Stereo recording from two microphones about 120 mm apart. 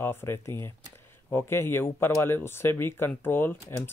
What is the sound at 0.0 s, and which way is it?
Speech, 20° left (ahead or behind).